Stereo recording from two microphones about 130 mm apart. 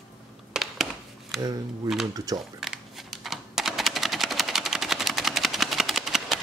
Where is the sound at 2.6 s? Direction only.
Centre (ahead or behind).